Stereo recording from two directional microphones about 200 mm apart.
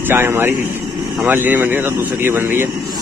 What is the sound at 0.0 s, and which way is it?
Speech, 10° right (ahead or behind).